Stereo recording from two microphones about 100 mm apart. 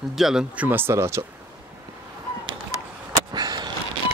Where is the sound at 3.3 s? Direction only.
45° right (ahead or behind).